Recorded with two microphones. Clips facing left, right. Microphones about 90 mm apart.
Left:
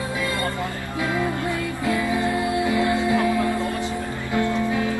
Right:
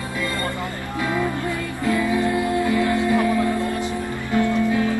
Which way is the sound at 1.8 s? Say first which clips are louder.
Right 3 dB; 15° left (ahead or behind).